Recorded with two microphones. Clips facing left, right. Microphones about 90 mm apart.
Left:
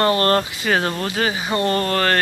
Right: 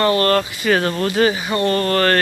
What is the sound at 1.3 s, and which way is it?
Speech, 20° left (ahead or behind).